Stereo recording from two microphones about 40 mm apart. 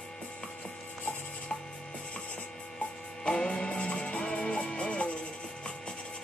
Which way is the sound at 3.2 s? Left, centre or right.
Left.